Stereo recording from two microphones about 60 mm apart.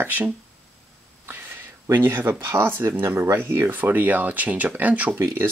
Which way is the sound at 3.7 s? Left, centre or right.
Right.